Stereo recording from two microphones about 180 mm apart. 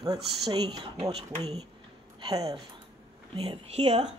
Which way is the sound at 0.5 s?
25° right (ahead or behind).